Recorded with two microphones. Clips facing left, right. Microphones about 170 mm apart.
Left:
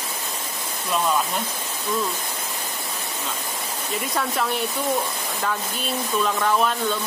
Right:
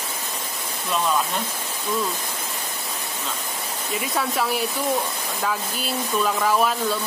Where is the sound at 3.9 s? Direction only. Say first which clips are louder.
Right 1 dB; 5° right (ahead or behind).